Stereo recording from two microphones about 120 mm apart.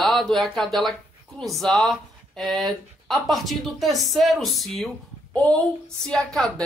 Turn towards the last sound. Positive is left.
turn(degrees=5)  # may be behind; listen again after turning